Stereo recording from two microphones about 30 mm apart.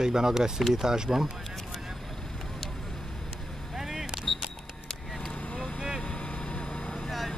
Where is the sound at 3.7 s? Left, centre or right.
Centre.